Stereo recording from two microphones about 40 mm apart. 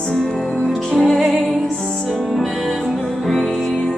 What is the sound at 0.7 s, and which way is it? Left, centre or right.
Music, centre.